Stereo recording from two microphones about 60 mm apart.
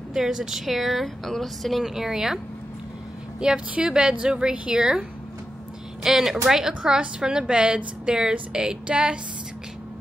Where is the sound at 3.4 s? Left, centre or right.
Centre.